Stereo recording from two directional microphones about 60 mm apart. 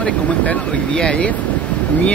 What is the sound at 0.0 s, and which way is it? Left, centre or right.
Speech, centre.